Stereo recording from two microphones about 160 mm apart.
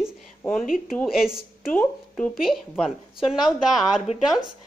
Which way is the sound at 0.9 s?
Centre (ahead or behind).